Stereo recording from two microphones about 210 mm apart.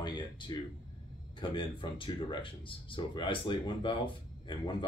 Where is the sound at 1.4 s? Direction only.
25° left (ahead or behind).